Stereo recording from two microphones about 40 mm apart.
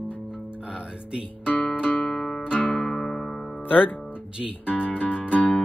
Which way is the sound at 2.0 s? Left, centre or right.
Centre.